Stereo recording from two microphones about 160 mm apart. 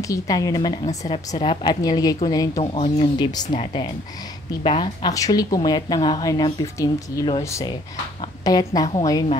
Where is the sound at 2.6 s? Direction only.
35° left (ahead or behind).